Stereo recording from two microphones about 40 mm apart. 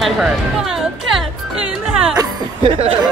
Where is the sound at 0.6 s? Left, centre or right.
Centre.